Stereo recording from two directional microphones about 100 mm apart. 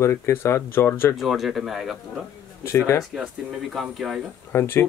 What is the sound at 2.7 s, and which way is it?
Speech, 30° left (ahead or behind).